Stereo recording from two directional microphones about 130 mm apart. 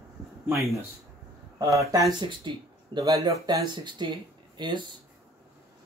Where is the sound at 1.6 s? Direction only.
25° right (ahead or behind).